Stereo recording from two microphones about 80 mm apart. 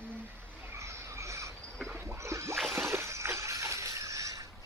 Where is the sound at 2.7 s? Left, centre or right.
Right.